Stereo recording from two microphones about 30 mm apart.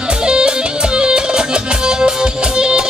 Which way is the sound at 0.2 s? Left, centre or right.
Right.